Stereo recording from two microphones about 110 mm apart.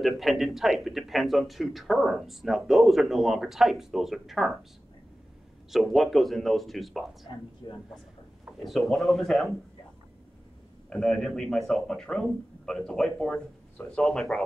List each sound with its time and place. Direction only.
0.0 s speech: centre (ahead or behind)
5.7 s speech: centre (ahead or behind)
7.6 s speech: 40° left (ahead or behind)
8.5 s speech: centre (ahead or behind)
10.9 s speech: 5° left (ahead or behind)